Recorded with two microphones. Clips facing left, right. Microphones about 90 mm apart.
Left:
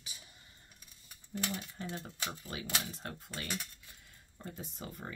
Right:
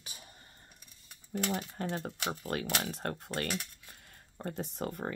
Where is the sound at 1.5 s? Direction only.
85° right.